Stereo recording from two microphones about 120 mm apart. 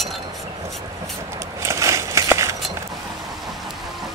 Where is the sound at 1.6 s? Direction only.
25° right (ahead or behind).